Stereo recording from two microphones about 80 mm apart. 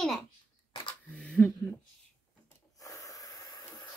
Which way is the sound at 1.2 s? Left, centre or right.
Centre.